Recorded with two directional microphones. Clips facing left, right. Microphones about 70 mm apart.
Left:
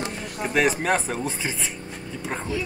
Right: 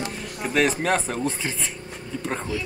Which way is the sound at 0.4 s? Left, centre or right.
Centre.